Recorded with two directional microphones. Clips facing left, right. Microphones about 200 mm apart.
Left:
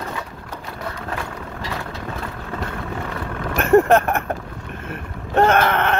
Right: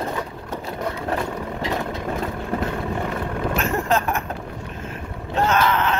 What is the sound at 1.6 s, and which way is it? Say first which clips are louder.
Vehicle: right 4 dB; 20° right (ahead or behind).